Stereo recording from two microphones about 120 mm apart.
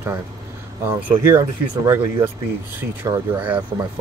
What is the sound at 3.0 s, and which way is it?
Speech, 30° right (ahead or behind).